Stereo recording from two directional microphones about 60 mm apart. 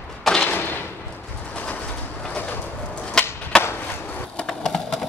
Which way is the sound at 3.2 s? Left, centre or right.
Centre.